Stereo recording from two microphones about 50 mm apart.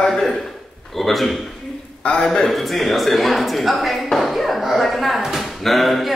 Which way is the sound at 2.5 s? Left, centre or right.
Centre.